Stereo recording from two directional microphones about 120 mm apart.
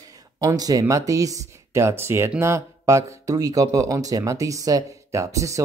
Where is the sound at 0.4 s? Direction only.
30° right (ahead or behind).